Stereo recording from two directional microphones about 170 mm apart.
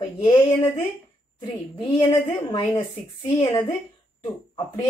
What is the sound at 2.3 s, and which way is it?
Speech, 35° left (ahead or behind).